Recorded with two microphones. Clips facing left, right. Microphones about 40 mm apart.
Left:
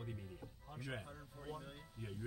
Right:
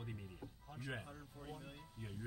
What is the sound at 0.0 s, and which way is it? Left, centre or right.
Music, centre.